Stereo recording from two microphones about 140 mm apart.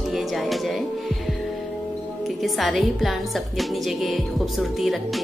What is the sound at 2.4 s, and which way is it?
A woman's voice, centre (ahead or behind).